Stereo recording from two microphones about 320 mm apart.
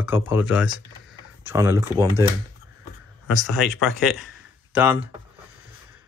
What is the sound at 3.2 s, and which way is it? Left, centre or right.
Speech, centre.